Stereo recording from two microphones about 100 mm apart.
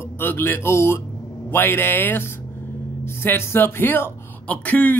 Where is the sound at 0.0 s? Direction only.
20° left (ahead or behind).